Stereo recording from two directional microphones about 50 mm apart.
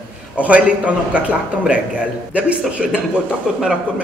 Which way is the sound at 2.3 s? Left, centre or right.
Right.